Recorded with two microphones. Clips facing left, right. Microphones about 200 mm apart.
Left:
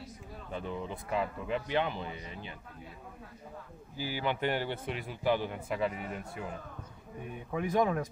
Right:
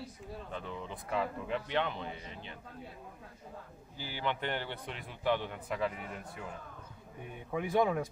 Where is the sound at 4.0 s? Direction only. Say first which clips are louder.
Left 4 dB; 10° left (ahead or behind).